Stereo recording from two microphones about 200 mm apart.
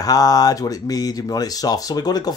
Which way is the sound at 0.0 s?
20° left (ahead or behind).